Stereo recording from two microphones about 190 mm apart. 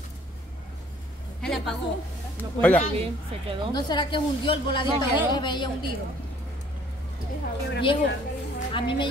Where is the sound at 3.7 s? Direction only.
20° left (ahead or behind).